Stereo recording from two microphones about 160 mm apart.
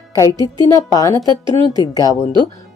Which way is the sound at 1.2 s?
25° right (ahead or behind).